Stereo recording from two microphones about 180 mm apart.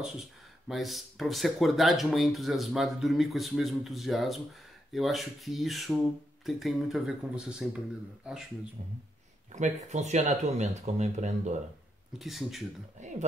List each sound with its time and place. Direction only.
0.7 s speech: centre (ahead or behind)
9.5 s speech: 40° right (ahead or behind)
12.2 s speech: centre (ahead or behind)
13.0 s speech: 45° right (ahead or behind)